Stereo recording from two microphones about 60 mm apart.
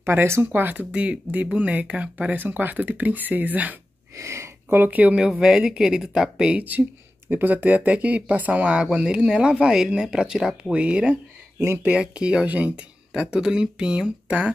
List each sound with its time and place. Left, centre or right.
0.0 s speech: right
4.2 s a sound: right
4.7 s speech: right
5.4 s speech: centre
7.2 s speech: right